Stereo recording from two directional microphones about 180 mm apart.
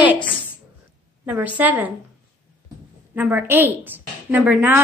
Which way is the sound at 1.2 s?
5° right (ahead or behind).